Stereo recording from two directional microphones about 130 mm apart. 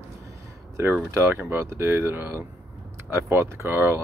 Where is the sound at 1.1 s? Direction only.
20° right (ahead or behind).